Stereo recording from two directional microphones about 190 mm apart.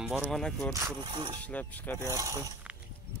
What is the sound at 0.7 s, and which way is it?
Speech, 20° right (ahead or behind).